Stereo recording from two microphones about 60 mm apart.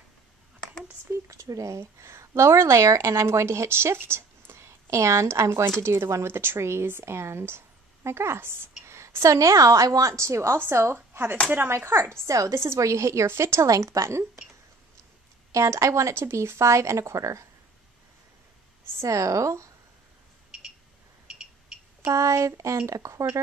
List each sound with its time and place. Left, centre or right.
1.2 s a woman's voice: right
12.4 s a woman's voice: right
13.7 s a woman's voice: right
19.0 s a woman's voice: right
21.3 s a sound: centre
22.1 s a woman's voice: right